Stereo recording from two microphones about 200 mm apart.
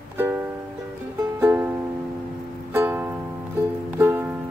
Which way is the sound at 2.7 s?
10° right (ahead or behind).